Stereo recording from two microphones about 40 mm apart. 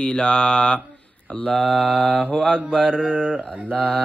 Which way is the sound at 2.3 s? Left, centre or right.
Centre.